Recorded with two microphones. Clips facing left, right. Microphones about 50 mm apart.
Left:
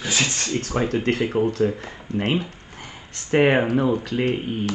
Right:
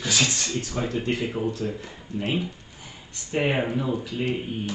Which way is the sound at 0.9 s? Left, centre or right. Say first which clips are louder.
Left 5 dB; left.